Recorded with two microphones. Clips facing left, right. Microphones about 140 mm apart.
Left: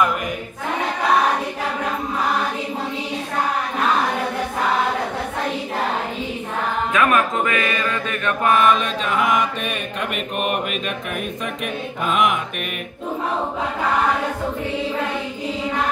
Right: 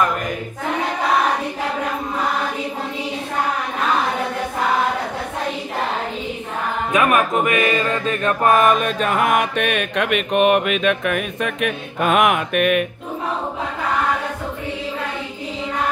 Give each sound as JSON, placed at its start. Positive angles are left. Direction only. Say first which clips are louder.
{"t": 6.9, "sound": "speech", "louder": "right 2 dB", "side_deg": -15}
{"t": 7.5, "sound": "mantra", "louder": "right 4 dB", "side_deg": -30}